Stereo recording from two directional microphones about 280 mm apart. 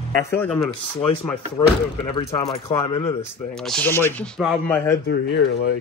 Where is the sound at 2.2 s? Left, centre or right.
Left; by 5.0 s centre.